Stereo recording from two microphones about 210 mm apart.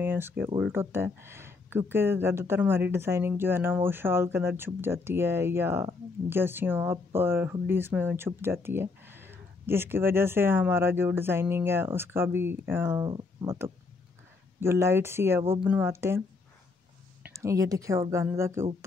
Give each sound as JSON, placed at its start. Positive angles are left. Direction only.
{"t": 0.0, "sound": "a sound", "side_deg": -10}
{"t": 0.6, "sound": "speech", "side_deg": -10}
{"t": 17.2, "sound": "speech", "side_deg": -15}